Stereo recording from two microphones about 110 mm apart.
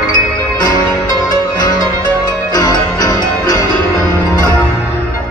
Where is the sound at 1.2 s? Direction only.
40° left (ahead or behind).